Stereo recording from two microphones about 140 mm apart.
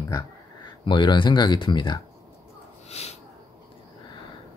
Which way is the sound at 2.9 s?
50° left (ahead or behind).